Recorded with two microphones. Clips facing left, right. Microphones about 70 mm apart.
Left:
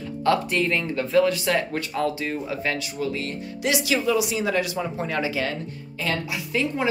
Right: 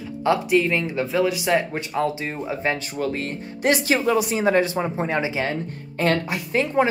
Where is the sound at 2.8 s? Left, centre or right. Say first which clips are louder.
Right 2 dB; right.